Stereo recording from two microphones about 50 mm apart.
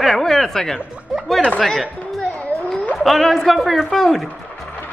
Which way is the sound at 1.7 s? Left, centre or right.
Centre.